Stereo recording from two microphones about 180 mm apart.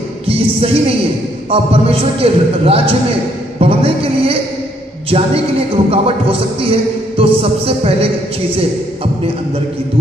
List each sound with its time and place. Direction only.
0.3 s speech: 30° right (ahead or behind)